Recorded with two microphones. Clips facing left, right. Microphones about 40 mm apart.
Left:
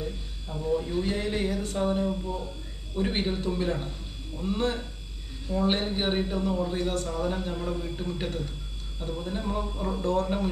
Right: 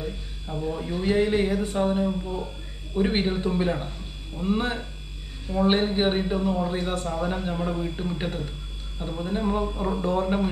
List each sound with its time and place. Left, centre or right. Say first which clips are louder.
0.0 s a man's voice: right 2 dB; centre